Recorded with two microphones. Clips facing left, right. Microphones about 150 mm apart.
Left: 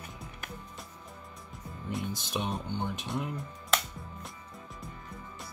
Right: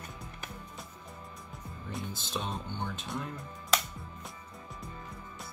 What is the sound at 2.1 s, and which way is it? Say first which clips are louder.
Speech: left 3 dB; 15° left (ahead or behind).